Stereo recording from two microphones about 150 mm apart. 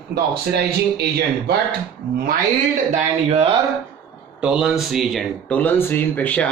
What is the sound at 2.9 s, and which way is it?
Speech, 40° right (ahead or behind).